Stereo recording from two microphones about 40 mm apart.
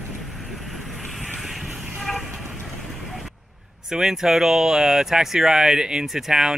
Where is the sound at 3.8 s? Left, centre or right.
Centre.